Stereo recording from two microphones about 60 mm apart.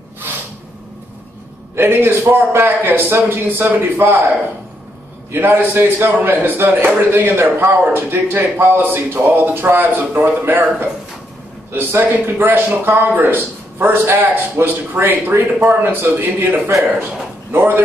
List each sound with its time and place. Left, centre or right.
1.8 s a man's voice: right
5.3 s a man's voice: right